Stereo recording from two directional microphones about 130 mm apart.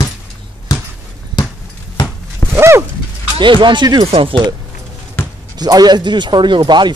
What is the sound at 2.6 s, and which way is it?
Dog, 20° right (ahead or behind).